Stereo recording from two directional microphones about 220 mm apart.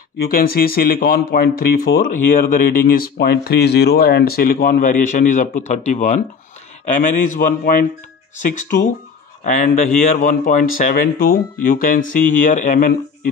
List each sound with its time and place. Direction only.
0.3 s speech: 40° left (ahead or behind)
9.4 s speech: 35° left (ahead or behind)